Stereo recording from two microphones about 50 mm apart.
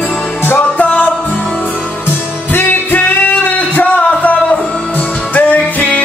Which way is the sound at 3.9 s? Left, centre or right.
Left.